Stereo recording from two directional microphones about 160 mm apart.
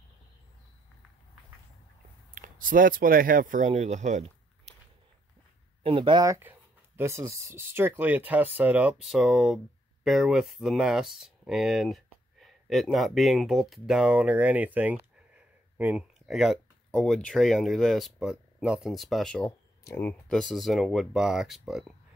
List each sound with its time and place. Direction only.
2.3 s speech: 60° right (ahead or behind)
5.9 s speech: 30° right (ahead or behind); by 19.5 s 5° left (ahead or behind)
19.8 s speech: 15° left (ahead or behind); by 21.9 s centre (ahead or behind)